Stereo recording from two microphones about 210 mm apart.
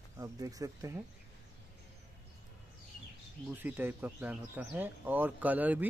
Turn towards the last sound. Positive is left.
turn(degrees=-10)  # may be behind; listen again after turning